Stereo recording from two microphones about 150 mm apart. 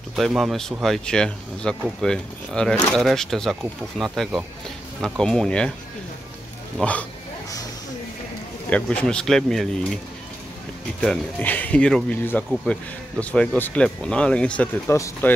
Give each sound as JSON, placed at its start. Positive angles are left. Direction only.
{"t": 0.1, "sound": "speech", "side_deg": 0}
{"t": 6.8, "sound": "speech", "side_deg": 10}
{"t": 8.6, "sound": "speech", "side_deg": 10}
{"t": 11.0, "sound": "speech", "side_deg": 10}